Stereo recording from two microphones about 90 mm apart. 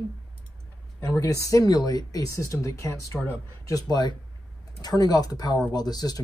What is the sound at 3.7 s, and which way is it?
Speech, 50° left (ahead or behind).